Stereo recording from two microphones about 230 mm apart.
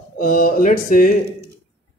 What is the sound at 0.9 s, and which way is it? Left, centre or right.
Speech, left.